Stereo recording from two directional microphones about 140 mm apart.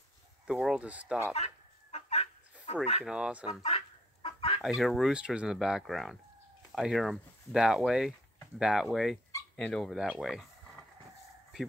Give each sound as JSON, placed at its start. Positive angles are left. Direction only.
{"t": 0.5, "sound": "speech", "side_deg": -5}
{"t": 1.3, "sound": "fowl", "side_deg": 50}
{"t": 2.7, "sound": "speech", "side_deg": 45}
{"t": 3.0, "sound": "speech", "side_deg": -5}
{"t": 3.6, "sound": "fowl", "side_deg": 45}
{"t": 4.6, "sound": "speech", "side_deg": -5}